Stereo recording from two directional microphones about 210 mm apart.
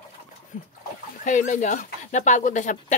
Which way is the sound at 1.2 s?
35° left (ahead or behind).